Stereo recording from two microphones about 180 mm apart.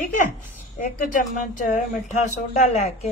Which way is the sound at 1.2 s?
45° left (ahead or behind).